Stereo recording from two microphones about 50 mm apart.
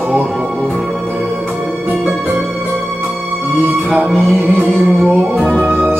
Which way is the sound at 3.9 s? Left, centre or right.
Right.